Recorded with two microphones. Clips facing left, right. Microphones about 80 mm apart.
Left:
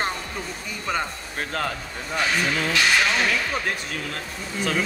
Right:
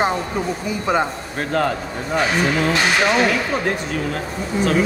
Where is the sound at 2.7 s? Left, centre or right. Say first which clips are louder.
Right 4 dB; right.